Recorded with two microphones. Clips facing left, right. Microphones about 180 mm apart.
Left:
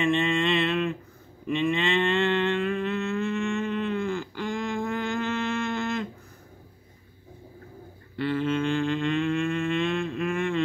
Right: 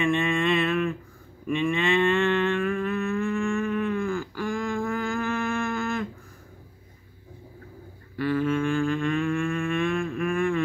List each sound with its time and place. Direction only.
0.3 s mantra: 20° left (ahead or behind)
1.7 s a sound: 20° left (ahead or behind)
8.2 s mantra: 25° left (ahead or behind)